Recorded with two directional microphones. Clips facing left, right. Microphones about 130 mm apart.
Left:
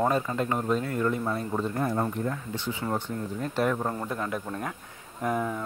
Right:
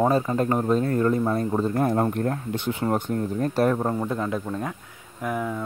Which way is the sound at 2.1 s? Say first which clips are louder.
Right 5 dB; 60° right (ahead or behind).